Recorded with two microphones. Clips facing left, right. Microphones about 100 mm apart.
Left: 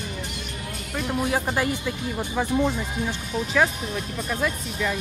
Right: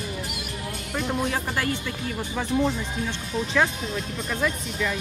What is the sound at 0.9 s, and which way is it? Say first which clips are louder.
Speech: left 2 dB; 5° left (ahead or behind).